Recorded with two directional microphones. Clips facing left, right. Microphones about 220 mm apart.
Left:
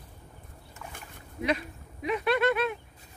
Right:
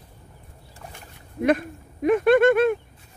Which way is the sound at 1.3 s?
50° right (ahead or behind).